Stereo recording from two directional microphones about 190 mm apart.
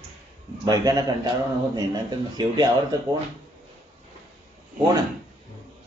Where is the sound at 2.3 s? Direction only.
20° right (ahead or behind).